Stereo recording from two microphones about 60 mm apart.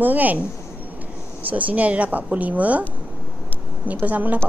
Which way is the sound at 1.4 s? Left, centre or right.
Right.